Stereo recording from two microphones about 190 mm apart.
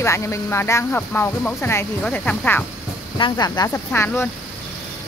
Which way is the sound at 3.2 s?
20° left (ahead or behind).